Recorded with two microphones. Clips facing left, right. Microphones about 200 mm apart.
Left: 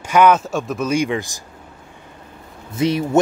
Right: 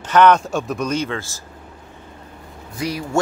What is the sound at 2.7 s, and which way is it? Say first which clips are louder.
Speech: left 7 dB; 25° left (ahead or behind).